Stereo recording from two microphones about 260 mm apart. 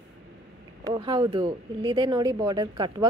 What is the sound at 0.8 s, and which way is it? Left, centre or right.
Speech, centre.